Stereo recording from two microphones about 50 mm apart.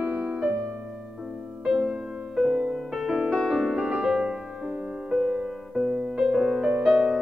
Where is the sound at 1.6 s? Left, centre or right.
Centre.